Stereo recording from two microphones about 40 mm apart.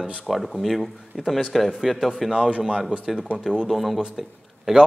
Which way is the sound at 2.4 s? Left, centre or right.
Right.